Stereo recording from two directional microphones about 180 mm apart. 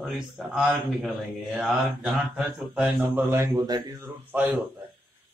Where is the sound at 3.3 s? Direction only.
20° right (ahead or behind).